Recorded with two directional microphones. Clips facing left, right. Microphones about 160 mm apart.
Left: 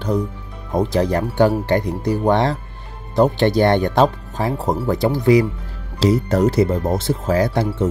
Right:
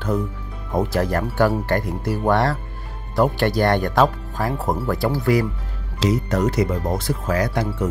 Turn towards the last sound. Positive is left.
turn(degrees=30)  # may be behind; listen again after turning